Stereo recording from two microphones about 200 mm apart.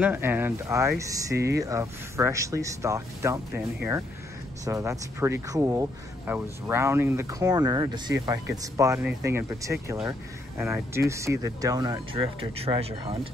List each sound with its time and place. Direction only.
0.0 s speech: 10° right (ahead or behind); by 12.9 s 30° right (ahead or behind)